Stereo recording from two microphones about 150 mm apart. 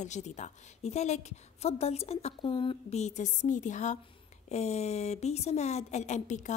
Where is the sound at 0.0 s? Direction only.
50° left (ahead or behind).